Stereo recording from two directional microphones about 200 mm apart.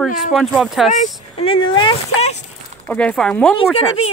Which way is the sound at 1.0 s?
30° left (ahead or behind).